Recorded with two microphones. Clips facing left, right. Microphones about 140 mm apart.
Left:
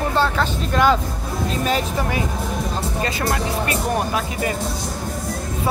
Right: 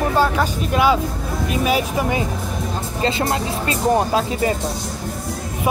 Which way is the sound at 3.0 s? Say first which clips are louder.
Right 5 dB; 25° right (ahead or behind).